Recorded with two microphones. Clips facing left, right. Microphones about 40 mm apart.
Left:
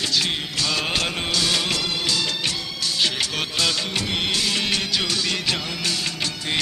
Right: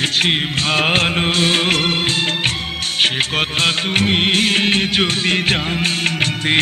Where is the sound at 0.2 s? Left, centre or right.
Right.